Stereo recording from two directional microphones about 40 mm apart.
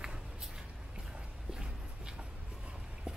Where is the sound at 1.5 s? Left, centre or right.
Right.